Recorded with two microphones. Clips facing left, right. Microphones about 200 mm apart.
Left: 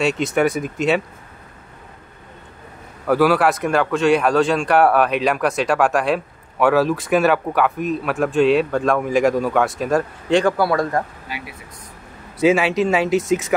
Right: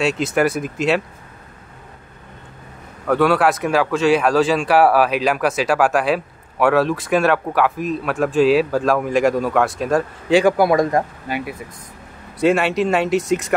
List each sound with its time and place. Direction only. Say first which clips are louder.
0.0 s speech: even; centre (ahead or behind)
3.1 s speech: even; 5° left (ahead or behind)
10.4 s speech: right 3 dB; 15° right (ahead or behind)
11.3 s speech: right 8 dB; 50° right (ahead or behind)
12.4 s speech: left 1 dB; centre (ahead or behind)